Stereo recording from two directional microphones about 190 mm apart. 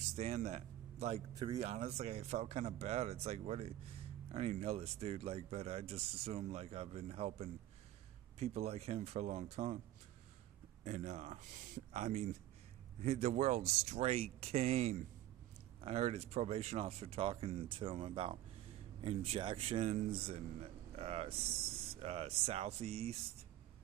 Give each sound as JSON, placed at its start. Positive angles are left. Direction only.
{"t": 0.1, "sound": "a man's voice", "side_deg": -35}
{"t": 1.3, "sound": "speech", "side_deg": -20}
{"t": 1.6, "sound": "speech", "side_deg": -35}
{"t": 10.8, "sound": "speech", "side_deg": -35}
{"t": 20.9, "sound": "a sound", "side_deg": -30}
{"t": 21.9, "sound": "speech", "side_deg": -30}